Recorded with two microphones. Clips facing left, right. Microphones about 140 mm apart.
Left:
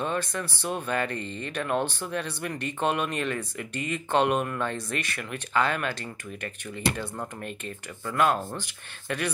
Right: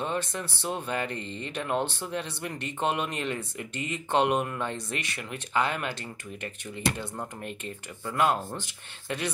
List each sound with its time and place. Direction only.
0.0 s speech: 20° right (ahead or behind)